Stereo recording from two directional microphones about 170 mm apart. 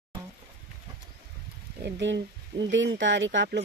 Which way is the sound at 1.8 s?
85° right.